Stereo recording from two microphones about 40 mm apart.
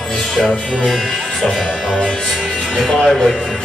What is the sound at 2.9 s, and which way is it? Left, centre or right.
Music, centre.